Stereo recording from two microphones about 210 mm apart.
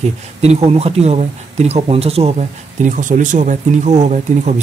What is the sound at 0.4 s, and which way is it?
Speech, 30° right (ahead or behind).